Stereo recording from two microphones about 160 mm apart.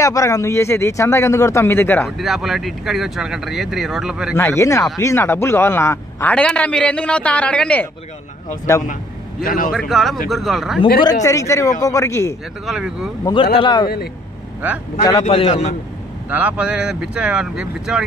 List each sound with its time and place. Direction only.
0.0 s a man's voice: 20° left (ahead or behind)
2.0 s speech: centre (ahead or behind)
4.4 s a man's voice: 15° left (ahead or behind)
8.7 s a man's voice: 20° left (ahead or behind)
9.4 s a man's voice: 60° left (ahead or behind)
9.7 s speech: centre (ahead or behind)
11.2 s a man's voice: 20° left (ahead or behind)
12.6 s speech: 5° right (ahead or behind)
13.2 s a man's voice: 30° left (ahead or behind)
15.2 s a man's voice: 40° left (ahead or behind)
16.3 s speech: 10° right (ahead or behind)